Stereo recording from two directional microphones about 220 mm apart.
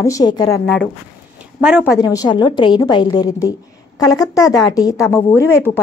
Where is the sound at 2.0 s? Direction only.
20° left (ahead or behind).